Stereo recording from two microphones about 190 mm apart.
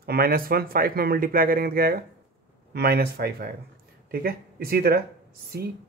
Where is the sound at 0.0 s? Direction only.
55° right (ahead or behind).